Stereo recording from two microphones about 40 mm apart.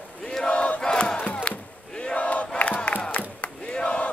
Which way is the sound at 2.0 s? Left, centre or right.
Left.